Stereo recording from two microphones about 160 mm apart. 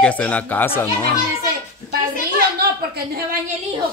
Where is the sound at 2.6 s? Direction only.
70° right (ahead or behind).